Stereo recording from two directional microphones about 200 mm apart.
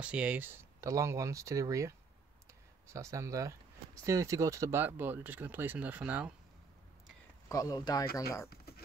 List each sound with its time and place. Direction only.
0.0 s speech: 5° right (ahead or behind)
7.4 s speech: 15° left (ahead or behind)